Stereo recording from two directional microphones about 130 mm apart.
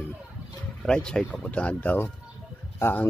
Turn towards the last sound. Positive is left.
turn(degrees=15)  # may be behind; listen again after turning